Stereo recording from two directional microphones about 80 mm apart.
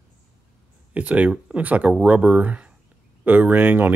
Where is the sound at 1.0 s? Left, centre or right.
Centre.